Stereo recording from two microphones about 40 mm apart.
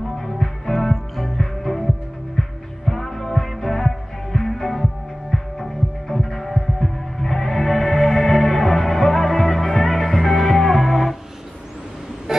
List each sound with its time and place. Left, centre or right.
0.2 s music: centre
5.3 s throbbing: centre
12.3 s a sound: centre